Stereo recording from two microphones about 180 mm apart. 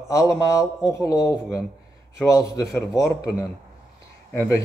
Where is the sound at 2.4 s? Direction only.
20° left (ahead or behind).